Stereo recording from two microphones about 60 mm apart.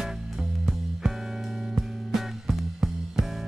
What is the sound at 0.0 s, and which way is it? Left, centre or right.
Music, centre.